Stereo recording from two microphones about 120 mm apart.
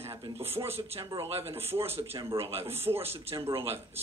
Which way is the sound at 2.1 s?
45° right (ahead or behind).